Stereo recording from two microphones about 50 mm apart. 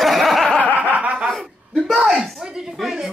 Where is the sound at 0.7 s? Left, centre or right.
Right.